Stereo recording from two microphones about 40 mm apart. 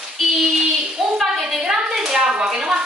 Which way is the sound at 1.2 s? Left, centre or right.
Centre.